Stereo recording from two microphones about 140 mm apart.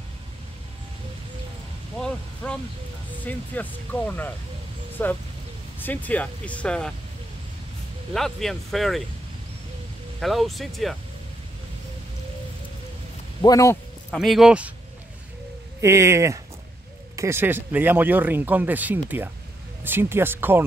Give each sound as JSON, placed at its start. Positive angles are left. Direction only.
{"t": 2.0, "sound": "a sound", "side_deg": 5}
{"t": 3.3, "sound": "speech", "side_deg": 10}
{"t": 8.1, "sound": "speech", "side_deg": 0}
{"t": 10.2, "sound": "speech", "side_deg": 0}
{"t": 13.4, "sound": "speech", "side_deg": 25}
{"t": 14.1, "sound": "speech", "side_deg": 0}
{"t": 15.8, "sound": "speech", "side_deg": -20}